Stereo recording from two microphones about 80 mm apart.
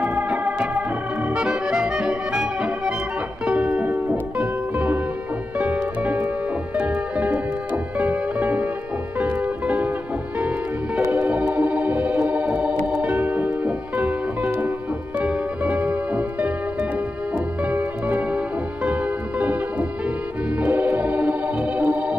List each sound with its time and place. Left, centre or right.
0.0 s organ: centre
1.3 s music: centre
11.1 s organ: centre
15.1 s music: centre
17.6 s music: centre
20.5 s organ: right